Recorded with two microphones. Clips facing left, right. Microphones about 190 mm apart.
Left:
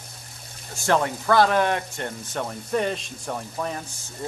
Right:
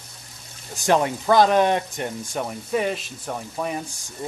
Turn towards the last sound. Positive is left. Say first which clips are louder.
# right 2 dB
turn(degrees=-10)  # may be behind; listen again after turning